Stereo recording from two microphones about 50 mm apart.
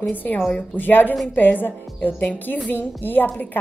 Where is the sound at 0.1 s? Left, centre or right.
Left.